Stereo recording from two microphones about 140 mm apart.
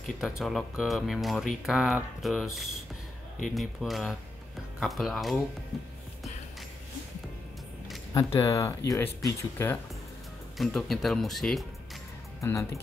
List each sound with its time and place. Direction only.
0.0 s speech: centre (ahead or behind)
8.1 s speech: 20° left (ahead or behind)
10.6 s speech: centre (ahead or behind)
12.4 s speech: 20° left (ahead or behind)